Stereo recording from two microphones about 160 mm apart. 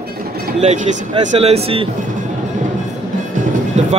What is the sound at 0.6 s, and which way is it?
Speech, 45° right (ahead or behind).